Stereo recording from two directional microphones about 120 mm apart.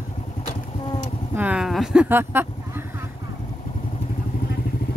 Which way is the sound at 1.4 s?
10° right (ahead or behind).